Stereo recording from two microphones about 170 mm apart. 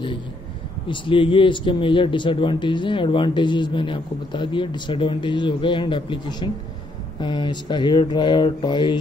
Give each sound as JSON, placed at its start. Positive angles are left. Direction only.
{"t": 0.8, "sound": "speech", "side_deg": 30}